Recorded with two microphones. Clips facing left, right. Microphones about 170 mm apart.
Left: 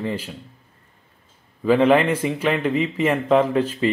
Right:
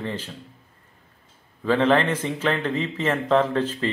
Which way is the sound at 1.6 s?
10° left (ahead or behind).